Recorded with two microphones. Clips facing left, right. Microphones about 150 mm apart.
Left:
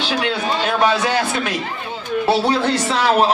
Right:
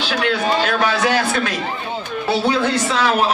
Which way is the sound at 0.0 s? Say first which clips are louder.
Right 1 dB; 25° left (ahead or behind).